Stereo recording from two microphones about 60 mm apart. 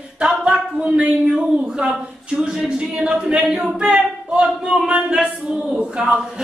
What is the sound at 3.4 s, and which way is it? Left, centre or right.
Singing, centre.